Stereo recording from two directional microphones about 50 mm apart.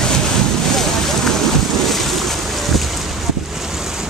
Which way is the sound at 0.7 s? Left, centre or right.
Centre.